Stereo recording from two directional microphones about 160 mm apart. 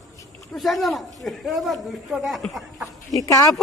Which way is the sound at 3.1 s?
20° left (ahead or behind).